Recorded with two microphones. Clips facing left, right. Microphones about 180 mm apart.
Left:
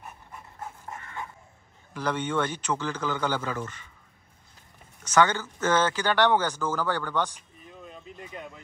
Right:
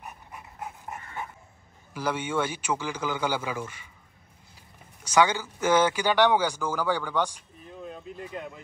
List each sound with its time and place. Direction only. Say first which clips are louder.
0.0 s dog: right 1 dB; 15° right (ahead or behind)
2.0 s speech: even; 10° right (ahead or behind)
5.0 s speech: even; 10° right (ahead or behind)